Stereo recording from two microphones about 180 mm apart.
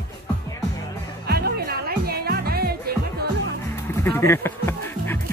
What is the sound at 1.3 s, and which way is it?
Music, 60° right (ahead or behind).